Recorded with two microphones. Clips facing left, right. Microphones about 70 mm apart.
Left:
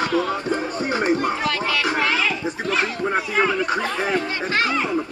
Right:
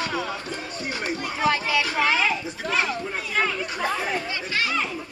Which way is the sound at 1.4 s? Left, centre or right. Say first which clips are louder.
Left 1 dB; centre.